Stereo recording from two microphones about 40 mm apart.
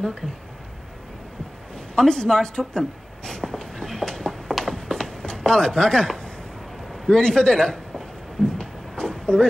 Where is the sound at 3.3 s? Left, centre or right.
Centre.